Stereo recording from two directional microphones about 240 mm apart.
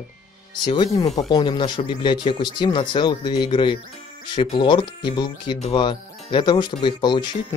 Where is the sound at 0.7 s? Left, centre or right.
Left.